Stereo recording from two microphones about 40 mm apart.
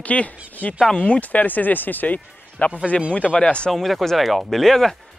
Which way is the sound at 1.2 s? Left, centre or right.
Left.